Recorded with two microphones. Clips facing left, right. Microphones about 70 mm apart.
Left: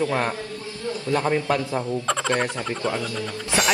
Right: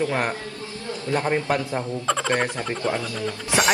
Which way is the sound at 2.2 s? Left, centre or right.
Right.